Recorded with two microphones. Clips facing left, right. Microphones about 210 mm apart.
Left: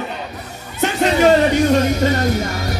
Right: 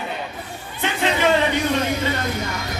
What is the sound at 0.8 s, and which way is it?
Music, 45° left (ahead or behind).